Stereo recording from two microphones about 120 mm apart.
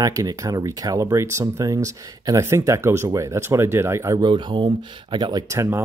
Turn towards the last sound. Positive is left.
turn(degrees=-25)  # may be behind; listen again after turning